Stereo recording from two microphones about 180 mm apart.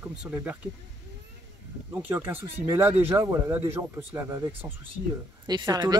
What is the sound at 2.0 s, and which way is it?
Speech, 10° right (ahead or behind).